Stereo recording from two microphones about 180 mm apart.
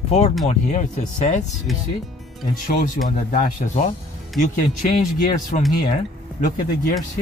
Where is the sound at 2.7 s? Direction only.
50° left (ahead or behind).